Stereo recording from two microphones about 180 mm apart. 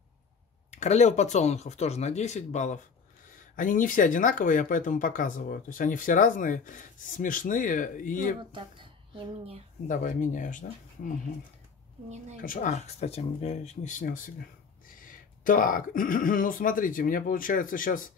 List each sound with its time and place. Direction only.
0.7 s speech: 40° left (ahead or behind)
8.4 s a woman's voice: 25° right (ahead or behind)
9.8 s speech: 45° left (ahead or behind)
12.4 s speech: 45° left (ahead or behind)